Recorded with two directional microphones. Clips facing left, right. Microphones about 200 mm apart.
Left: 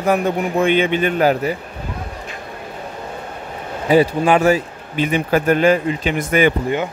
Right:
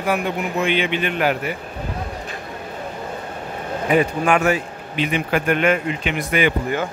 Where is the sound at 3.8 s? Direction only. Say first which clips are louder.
Left 4 dB; 30° left (ahead or behind).